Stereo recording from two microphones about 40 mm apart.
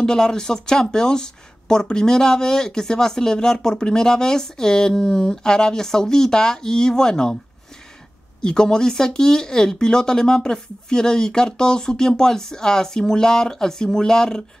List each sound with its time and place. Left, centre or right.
0.0 s speech: centre
8.4 s speech: centre